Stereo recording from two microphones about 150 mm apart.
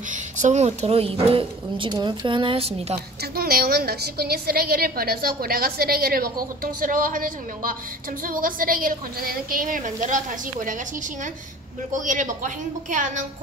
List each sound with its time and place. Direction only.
0.1 s speech: 55° right (ahead or behind)
3.2 s a woman's voice: 85° right; by 10.8 s 60° right (ahead or behind)
11.9 s a woman's voice: 55° right (ahead or behind)